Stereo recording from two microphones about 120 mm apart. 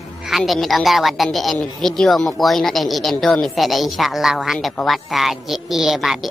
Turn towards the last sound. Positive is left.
turn(degrees=0)  # may be behind; listen again after turning